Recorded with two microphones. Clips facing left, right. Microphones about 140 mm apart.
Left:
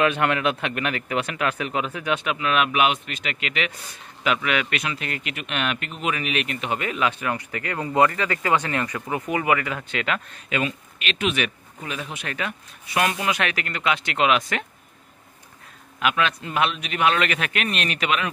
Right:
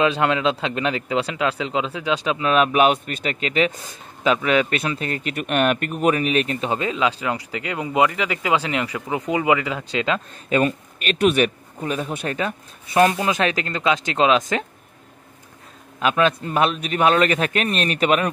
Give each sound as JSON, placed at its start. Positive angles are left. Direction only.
{"t": 0.0, "sound": "a man's voice", "side_deg": -25}
{"t": 2.1, "sound": "a man's voice", "side_deg": -30}
{"t": 10.5, "sound": "a man's voice", "side_deg": -45}
{"t": 16.0, "sound": "a man's voice", "side_deg": -35}